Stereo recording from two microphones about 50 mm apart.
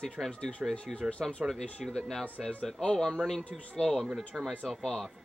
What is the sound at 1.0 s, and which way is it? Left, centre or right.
Speech, centre.